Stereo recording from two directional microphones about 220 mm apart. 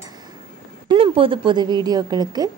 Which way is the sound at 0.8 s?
25° right (ahead or behind).